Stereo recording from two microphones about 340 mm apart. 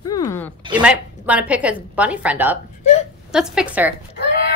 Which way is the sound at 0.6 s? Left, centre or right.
Centre.